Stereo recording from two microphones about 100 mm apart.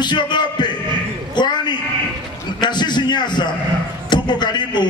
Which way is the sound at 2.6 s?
50° left (ahead or behind).